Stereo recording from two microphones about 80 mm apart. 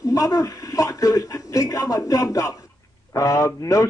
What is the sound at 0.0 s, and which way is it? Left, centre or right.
A man's voice, left.